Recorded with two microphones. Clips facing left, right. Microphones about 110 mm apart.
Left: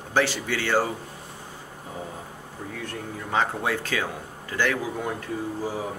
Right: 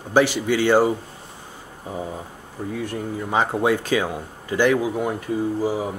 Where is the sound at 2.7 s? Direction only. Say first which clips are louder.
Right 8 dB; 10° right (ahead or behind).